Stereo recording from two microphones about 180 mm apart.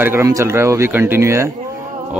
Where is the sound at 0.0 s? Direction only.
15° right (ahead or behind).